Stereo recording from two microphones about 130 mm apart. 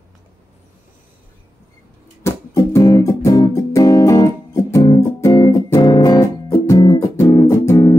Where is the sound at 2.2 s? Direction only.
25° left (ahead or behind).